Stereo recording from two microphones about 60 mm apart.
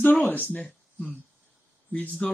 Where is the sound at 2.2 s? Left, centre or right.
Centre.